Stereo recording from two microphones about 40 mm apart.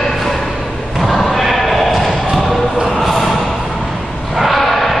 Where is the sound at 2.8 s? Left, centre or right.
Centre.